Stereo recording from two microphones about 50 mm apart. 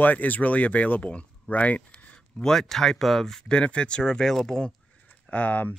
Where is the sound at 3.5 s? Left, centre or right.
Centre.